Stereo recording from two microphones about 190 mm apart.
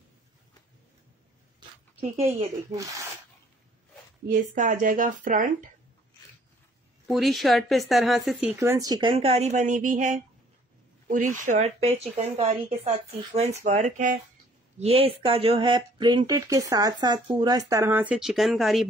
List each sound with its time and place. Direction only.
2.0 s speech: 30° right (ahead or behind)
2.7 s speech: 15° right (ahead or behind)
4.3 s speech: 45° right (ahead or behind)
7.1 s speech: centre (ahead or behind)